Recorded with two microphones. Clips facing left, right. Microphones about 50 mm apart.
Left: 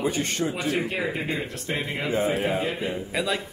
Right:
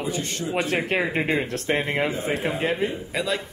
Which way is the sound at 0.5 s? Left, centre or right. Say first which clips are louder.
Right 3 dB; right.